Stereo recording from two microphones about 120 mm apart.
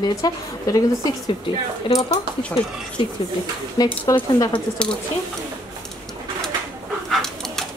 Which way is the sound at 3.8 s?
35° left (ahead or behind).